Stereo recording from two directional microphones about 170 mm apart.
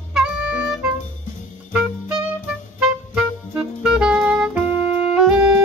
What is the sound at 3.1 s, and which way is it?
Music, 5° right (ahead or behind).